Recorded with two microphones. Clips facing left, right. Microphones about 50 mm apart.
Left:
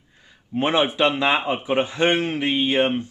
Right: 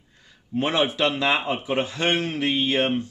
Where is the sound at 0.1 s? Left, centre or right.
Centre.